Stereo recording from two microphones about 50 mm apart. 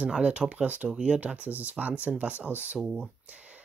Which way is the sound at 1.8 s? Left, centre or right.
Right.